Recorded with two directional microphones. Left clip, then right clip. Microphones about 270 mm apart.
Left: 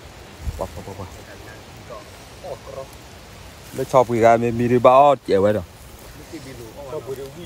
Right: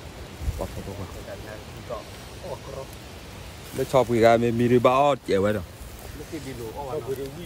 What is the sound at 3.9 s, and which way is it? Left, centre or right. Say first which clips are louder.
Speech: left 4 dB; centre.